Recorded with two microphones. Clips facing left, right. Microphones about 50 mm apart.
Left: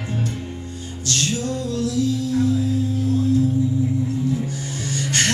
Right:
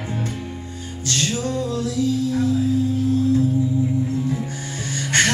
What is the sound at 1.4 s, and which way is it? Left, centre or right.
Music, right.